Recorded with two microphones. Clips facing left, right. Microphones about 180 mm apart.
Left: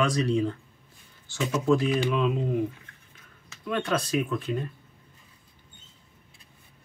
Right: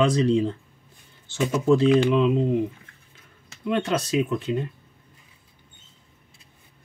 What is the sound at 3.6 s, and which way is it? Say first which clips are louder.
Speech: right 3 dB; 20° right (ahead or behind).